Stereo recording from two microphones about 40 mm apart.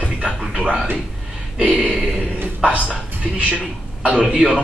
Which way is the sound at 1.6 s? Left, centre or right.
Right.